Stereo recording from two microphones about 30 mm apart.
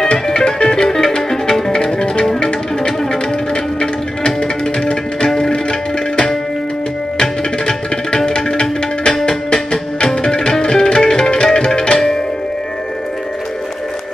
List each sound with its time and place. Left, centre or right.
0.1 s music: left
4.2 s music: left
5.2 s music: centre
7.2 s tabla: left
8.3 s music: left